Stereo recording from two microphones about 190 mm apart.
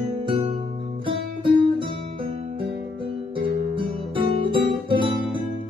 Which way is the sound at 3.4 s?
25° right (ahead or behind).